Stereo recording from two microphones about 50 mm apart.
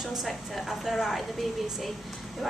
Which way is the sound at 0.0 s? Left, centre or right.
Centre.